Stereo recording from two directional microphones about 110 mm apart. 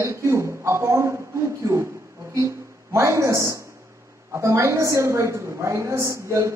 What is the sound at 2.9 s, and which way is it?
A woman's voice, 25° right (ahead or behind).